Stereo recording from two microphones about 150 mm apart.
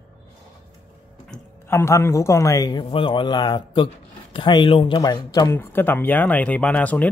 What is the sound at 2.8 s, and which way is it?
Speech, 35° left (ahead or behind).